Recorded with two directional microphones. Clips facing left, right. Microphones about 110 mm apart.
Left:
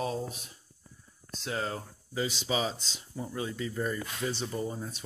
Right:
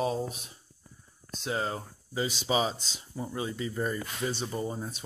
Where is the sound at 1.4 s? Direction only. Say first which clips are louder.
Right 2 dB; 20° right (ahead or behind).